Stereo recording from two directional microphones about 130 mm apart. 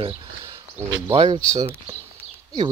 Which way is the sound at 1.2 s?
30° right (ahead or behind).